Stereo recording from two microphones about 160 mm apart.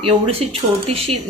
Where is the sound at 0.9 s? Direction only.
40° right (ahead or behind).